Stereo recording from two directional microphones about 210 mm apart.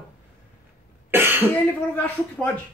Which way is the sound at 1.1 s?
10° right (ahead or behind).